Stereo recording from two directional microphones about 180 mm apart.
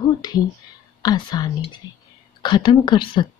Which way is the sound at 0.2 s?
20° left (ahead or behind).